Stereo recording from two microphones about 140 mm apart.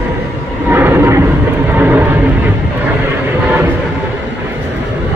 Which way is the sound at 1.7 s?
10° right (ahead or behind).